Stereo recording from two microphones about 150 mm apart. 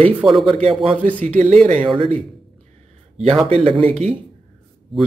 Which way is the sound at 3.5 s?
40° right (ahead or behind).